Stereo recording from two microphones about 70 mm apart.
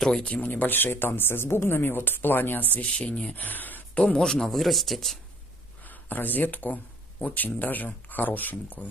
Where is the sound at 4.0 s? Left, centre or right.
Centre.